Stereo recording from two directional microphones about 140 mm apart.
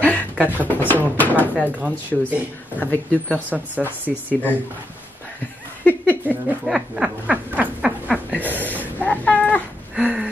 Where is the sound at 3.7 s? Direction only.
10° left (ahead or behind).